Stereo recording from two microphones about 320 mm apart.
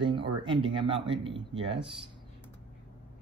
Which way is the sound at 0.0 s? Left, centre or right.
Centre.